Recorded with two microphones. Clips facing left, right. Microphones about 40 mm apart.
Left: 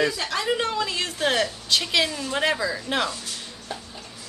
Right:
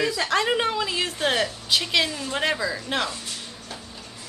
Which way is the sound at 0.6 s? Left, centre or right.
Centre.